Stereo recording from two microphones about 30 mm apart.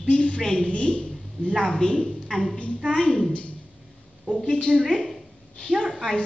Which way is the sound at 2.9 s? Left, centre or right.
Left.